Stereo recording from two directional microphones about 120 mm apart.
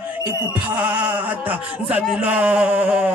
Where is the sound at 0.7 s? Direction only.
15° right (ahead or behind).